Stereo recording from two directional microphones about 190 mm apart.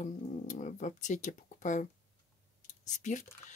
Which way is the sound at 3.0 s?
40° left (ahead or behind).